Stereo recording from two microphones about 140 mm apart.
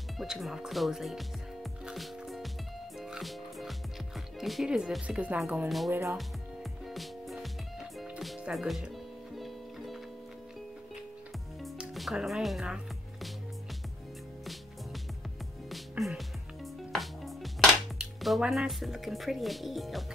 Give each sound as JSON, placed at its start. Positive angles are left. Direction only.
{"t": 0.2, "sound": "speech", "side_deg": 0}
{"t": 3.0, "sound": "music", "side_deg": 0}
{"t": 4.4, "sound": "speech", "side_deg": 0}
{"t": 6.1, "sound": "music", "side_deg": 0}
{"t": 11.6, "sound": "music", "side_deg": 0}
{"t": 14.4, "sound": "music", "side_deg": 0}
{"t": 16.0, "sound": "speech", "side_deg": 0}
{"t": 16.9, "sound": "music", "side_deg": 0}
{"t": 17.9, "sound": "speech", "side_deg": 0}